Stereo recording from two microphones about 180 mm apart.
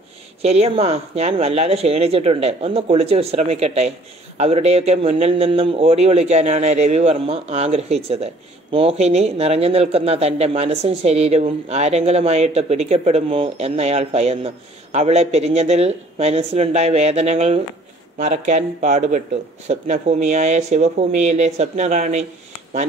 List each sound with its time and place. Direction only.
0.4 s speech: 35° right (ahead or behind)